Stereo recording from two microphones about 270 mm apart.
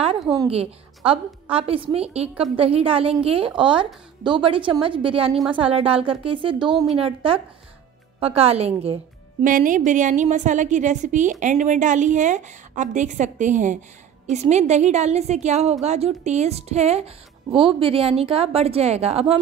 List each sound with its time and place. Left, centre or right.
0.4 s a woman's voice: right